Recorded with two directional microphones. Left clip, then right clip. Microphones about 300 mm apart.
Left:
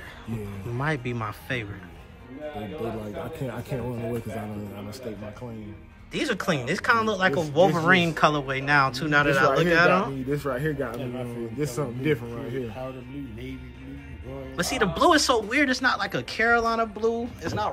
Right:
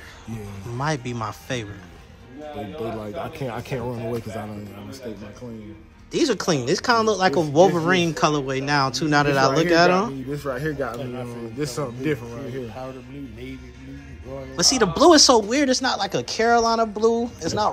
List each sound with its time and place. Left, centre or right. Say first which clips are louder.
0.7 s speech: right 2 dB; centre
3.3 s speech: right 4 dB; right
6.1 s speech: right 5 dB; centre
14.5 s speech: right 6 dB; centre